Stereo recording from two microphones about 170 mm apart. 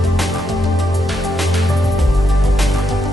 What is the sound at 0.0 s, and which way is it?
Music, centre (ahead or behind).